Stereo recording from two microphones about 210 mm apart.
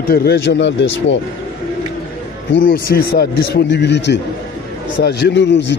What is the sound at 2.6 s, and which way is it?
A man's voice, 45° left (ahead or behind).